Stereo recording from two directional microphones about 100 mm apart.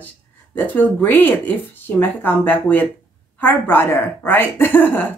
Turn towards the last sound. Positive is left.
turn(degrees=20)  # may be behind; listen again after turning